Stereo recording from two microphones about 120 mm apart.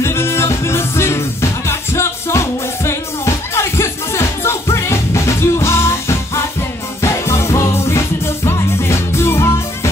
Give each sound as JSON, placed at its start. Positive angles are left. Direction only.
{"t": 0.0, "sound": "music", "side_deg": 20}